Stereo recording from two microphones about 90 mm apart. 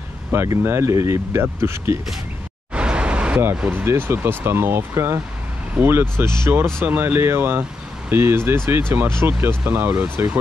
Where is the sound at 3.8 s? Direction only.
30° right (ahead or behind).